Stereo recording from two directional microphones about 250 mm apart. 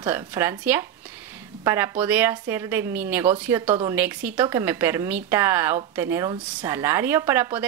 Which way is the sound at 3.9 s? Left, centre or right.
Centre.